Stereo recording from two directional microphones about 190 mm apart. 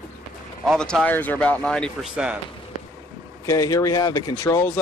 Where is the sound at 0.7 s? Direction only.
5° left (ahead or behind).